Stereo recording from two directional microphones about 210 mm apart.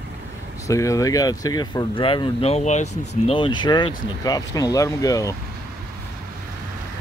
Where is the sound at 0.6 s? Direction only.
15° left (ahead or behind); by 3.1 s 35° left (ahead or behind).